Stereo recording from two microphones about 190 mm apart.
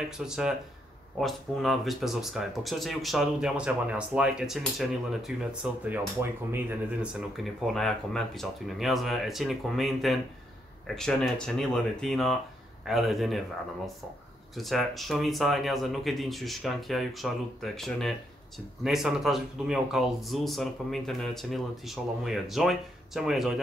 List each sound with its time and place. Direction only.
0.2 s speech: 5° right (ahead or behind)
14.5 s speech: centre (ahead or behind)